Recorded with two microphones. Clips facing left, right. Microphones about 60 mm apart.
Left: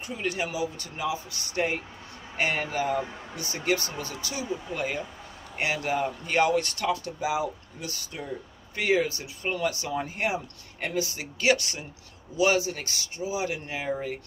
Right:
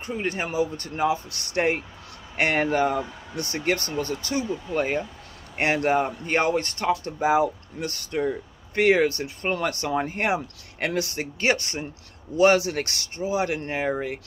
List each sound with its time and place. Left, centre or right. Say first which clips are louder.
0.0 s speech: right 2 dB; right
5.6 s speech: right 5 dB; right
10.3 s speech: right 6 dB; right
12.4 s speech: right 5 dB; right